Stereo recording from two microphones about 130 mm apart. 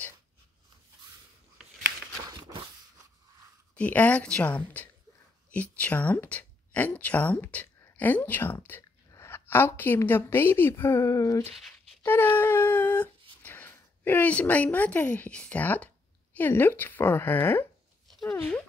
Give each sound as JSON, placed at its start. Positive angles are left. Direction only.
{"t": 3.7, "sound": "speech", "side_deg": 10}
{"t": 12.0, "sound": "a sound", "side_deg": 15}
{"t": 16.3, "sound": "speech", "side_deg": 15}